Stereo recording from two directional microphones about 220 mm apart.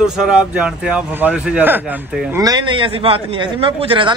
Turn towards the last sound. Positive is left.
turn(degrees=-25)  # may be behind; listen again after turning